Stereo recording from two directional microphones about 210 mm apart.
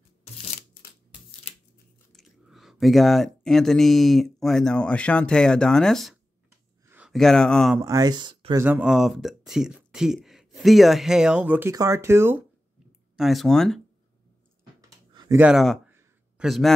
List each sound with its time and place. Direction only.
2.1 s speech: centre (ahead or behind)
7.8 s speech: 15° right (ahead or behind)
8.6 s speech: 5° right (ahead or behind)
13.1 s speech: centre (ahead or behind)
15.1 s speech: 15° right (ahead or behind)
15.9 s a sound: 5° right (ahead or behind)